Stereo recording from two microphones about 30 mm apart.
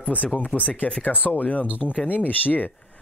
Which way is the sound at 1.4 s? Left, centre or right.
Left.